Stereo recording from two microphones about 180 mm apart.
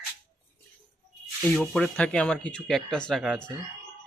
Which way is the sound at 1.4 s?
5° left (ahead or behind).